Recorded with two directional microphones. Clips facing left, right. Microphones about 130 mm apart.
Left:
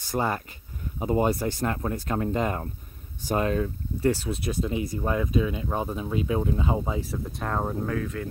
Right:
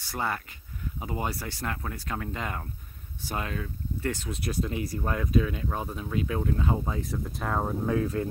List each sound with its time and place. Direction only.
0.1 s speech: 20° left (ahead or behind)
0.9 s speech: 30° left (ahead or behind)
4.6 s speech: 20° left (ahead or behind)
7.0 s speech: centre (ahead or behind)
7.8 s speech: 20° right (ahead or behind)